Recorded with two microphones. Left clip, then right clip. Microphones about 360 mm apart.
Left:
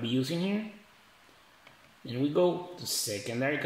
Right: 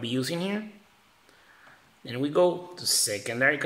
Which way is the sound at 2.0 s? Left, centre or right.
Right.